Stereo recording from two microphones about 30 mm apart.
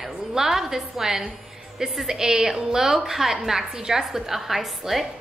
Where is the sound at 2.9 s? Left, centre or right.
Centre.